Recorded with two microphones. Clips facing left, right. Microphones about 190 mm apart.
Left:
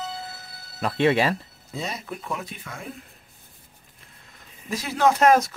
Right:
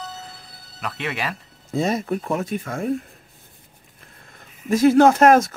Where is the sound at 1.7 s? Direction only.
50° right (ahead or behind).